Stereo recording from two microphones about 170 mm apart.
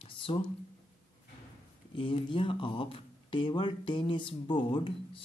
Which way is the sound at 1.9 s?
30° left (ahead or behind).